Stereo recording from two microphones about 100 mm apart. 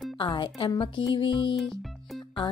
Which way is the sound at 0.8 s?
55° left (ahead or behind).